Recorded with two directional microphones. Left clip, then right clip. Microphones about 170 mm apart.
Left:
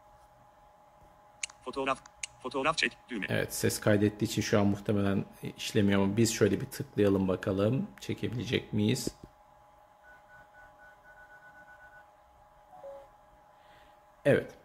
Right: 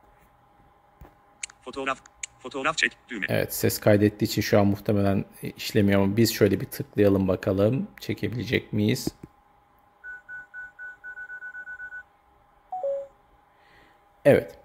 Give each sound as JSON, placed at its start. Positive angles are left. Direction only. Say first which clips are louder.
{"t": 1.4, "sound": "speech", "louder": "right 2 dB", "side_deg": 10}
{"t": 3.3, "sound": "speech", "louder": "right 6 dB", "side_deg": -30}
{"t": 14.2, "sound": "a sound", "louder": "right 8 dB", "side_deg": -30}